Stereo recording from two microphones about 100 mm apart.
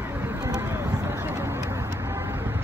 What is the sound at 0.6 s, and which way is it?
Vehicle, 25° right (ahead or behind).